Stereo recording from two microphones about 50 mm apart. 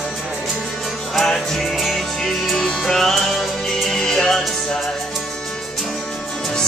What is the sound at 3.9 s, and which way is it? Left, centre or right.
Music, centre.